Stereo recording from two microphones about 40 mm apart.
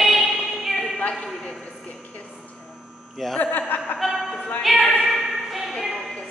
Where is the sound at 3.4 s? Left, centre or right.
Left.